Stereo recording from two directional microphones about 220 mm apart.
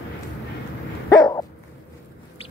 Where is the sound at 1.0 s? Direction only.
15° left (ahead or behind).